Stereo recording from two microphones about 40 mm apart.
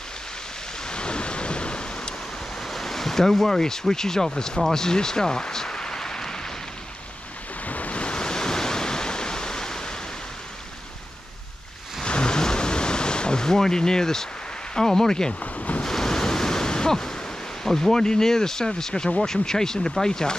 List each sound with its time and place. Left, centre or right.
0.8 s thunder: left
2.6 s speech: centre
7.6 s waves: left; by 9.9 s centre
12.0 s a sound: left
14.8 s speech: centre
15.5 s waves: left
15.8 s waves: centre
17.9 s speech: centre